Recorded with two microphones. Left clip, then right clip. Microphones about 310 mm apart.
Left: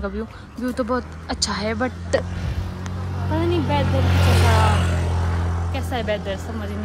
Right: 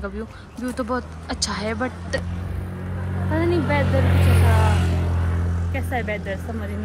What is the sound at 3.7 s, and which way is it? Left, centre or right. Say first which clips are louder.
Speech: right 1 dB; centre.